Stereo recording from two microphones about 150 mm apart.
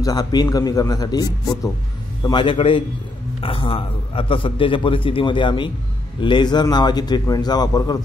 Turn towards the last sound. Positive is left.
turn(degrees=25)  # may be behind; listen again after turning